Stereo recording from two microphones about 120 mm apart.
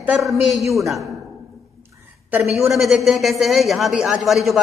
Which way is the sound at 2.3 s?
20° right (ahead or behind).